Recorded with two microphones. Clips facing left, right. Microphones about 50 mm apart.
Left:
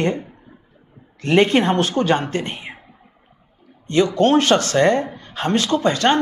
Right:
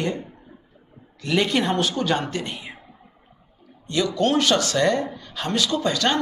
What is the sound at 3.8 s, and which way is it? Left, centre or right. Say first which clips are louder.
Speech: left 6 dB; left.